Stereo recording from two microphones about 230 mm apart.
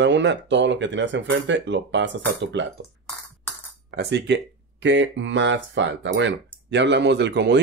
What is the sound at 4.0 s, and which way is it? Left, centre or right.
Speech, right.